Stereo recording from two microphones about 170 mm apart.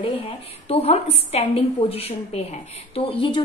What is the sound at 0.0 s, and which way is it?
A woman's voice, 35° left (ahead or behind).